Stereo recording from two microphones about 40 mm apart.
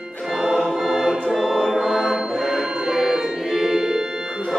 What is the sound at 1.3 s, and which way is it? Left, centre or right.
Music, centre.